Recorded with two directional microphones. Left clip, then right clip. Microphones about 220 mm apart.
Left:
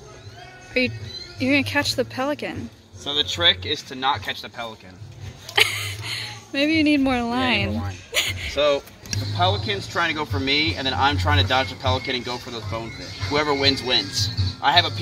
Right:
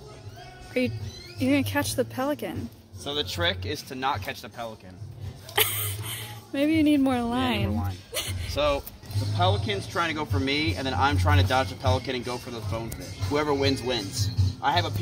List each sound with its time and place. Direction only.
0.8 s speech: centre (ahead or behind)
3.0 s speech: 25° right (ahead or behind)
5.5 s speech: 5° right (ahead or behind)